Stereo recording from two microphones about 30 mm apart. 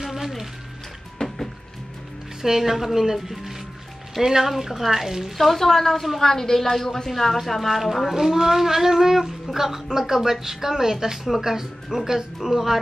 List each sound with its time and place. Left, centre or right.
0.0 s music: centre
1.2 s music: left
2.4 s speech: centre
5.4 s speech: centre